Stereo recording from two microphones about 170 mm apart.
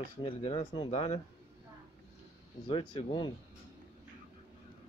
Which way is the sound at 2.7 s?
35° left (ahead or behind).